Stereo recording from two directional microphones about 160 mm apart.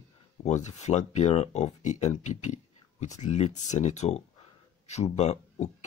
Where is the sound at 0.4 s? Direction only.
45° left (ahead or behind).